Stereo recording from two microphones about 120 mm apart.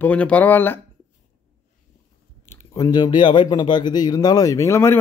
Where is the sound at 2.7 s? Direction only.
35° left (ahead or behind).